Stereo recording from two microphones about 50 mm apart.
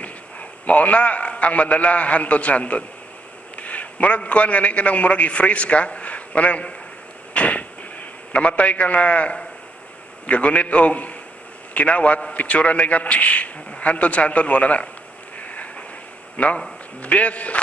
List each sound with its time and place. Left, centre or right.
0.0 s a man's voice: left
7.3 s a sound: left
8.3 s a man's voice: left
15.3 s vehicle: left
16.3 s a man's voice: left